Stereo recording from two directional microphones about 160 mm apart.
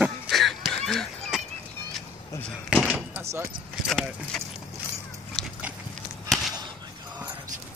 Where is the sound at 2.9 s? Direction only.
15° right (ahead or behind).